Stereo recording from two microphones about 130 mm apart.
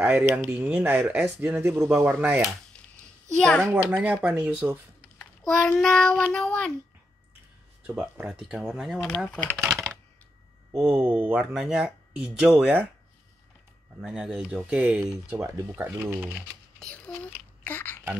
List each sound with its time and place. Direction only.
0.0 s speech: 10° right (ahead or behind)
3.3 s speech: 5° left (ahead or behind)
3.7 s speech: 10° right (ahead or behind)
5.2 s a sound: 5° left (ahead or behind)
5.8 s speech: centre (ahead or behind)
7.8 s speech: 10° right (ahead or behind)
9.3 s speech: 15° left (ahead or behind)
9.7 s typing: centre (ahead or behind)
10.8 s speech: 15° right (ahead or behind)
14.0 s speech: 5° right (ahead or behind)
16.8 s a child's voice: 10° left (ahead or behind)
17.6 s a sound: 15° left (ahead or behind)